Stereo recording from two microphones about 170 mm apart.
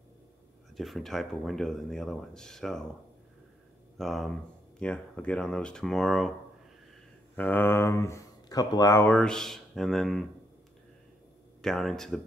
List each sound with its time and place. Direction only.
0.7 s speech: centre (ahead or behind)
4.0 s speech: centre (ahead or behind)
7.3 s speech: 10° left (ahead or behind)
9.1 s speech: 5° left (ahead or behind)
11.6 s speech: centre (ahead or behind)